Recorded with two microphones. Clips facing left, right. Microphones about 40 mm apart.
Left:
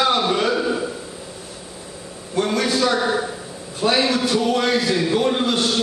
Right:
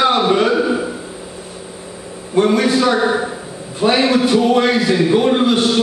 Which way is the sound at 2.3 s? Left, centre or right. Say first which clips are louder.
Right 6 dB; centre.